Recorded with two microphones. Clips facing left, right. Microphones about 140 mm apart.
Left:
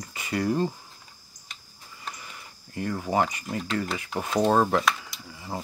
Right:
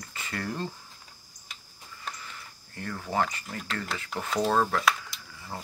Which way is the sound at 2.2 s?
15° left (ahead or behind).